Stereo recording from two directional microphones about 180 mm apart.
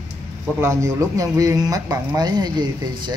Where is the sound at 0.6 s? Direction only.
15° right (ahead or behind).